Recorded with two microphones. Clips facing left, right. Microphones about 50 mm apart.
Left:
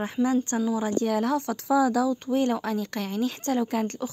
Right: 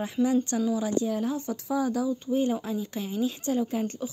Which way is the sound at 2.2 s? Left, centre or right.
Left.